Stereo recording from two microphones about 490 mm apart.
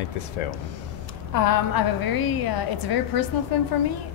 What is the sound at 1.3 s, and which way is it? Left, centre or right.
A woman's voice, left.